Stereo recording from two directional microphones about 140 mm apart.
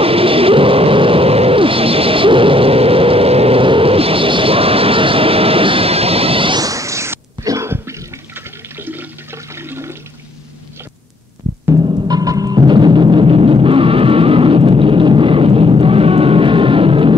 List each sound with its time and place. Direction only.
0.0 s a sound: 40° right (ahead or behind)
6.6 s sneeze: 25° right (ahead or behind)
8.7 s toilet flush: 15° right (ahead or behind)
11.7 s music: 30° right (ahead or behind)